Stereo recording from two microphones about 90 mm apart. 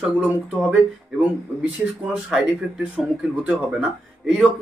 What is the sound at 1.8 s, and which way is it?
Speech, 15° right (ahead or behind).